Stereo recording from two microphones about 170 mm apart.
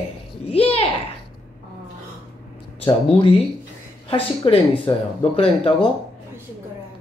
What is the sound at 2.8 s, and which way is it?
Speech, 35° left (ahead or behind).